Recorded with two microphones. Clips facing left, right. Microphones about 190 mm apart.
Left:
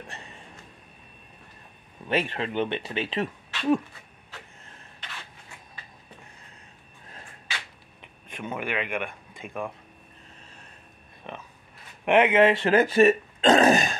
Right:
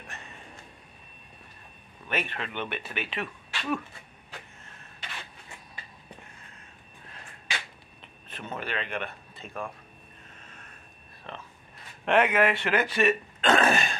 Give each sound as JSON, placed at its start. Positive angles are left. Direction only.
{"t": 2.0, "sound": "speech", "side_deg": 30}
{"t": 5.0, "sound": "a sound", "side_deg": -10}
{"t": 8.3, "sound": "speech", "side_deg": 15}
{"t": 11.3, "sound": "speech", "side_deg": 15}
{"t": 12.6, "sound": "speech", "side_deg": 40}
{"t": 13.4, "sound": "burping", "side_deg": 35}